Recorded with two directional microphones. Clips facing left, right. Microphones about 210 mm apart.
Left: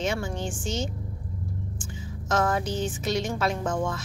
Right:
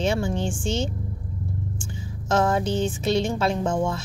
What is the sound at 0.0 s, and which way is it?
A woman's voice, 30° right (ahead or behind).